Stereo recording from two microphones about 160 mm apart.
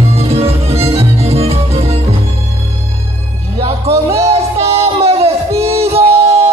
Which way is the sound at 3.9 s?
15° right (ahead or behind).